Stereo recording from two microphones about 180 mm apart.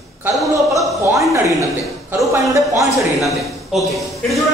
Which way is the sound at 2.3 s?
20° right (ahead or behind).